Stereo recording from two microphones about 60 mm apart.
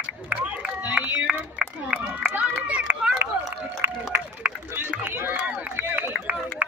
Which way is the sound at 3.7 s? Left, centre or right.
Right.